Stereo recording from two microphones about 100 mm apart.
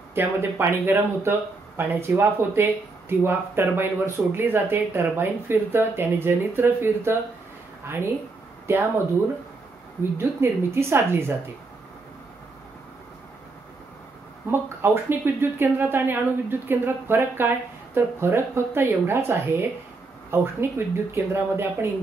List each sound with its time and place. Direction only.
0.1 s speech: 25° right (ahead or behind)
10.1 s speech: 25° right (ahead or behind)
14.5 s speech: 25° right (ahead or behind)